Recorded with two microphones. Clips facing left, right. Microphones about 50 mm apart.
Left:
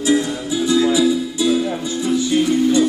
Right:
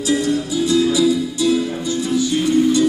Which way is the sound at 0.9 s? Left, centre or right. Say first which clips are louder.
Even; left.